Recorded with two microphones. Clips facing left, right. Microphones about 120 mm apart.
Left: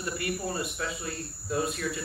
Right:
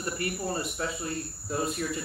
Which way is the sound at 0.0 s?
35° right (ahead or behind).